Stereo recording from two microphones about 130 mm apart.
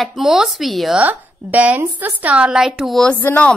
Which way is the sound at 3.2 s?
15° left (ahead or behind).